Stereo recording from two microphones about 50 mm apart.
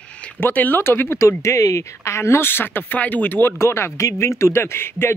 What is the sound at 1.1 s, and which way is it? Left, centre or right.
Speech, left.